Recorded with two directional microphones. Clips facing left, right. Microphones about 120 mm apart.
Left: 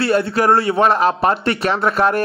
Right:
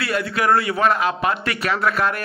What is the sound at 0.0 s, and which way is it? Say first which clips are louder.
A man's voice: left 6 dB; 30° left (ahead or behind).